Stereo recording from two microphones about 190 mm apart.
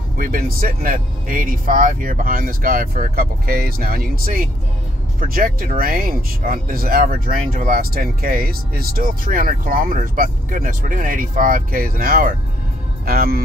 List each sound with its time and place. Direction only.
0.2 s speech: 50° right (ahead or behind)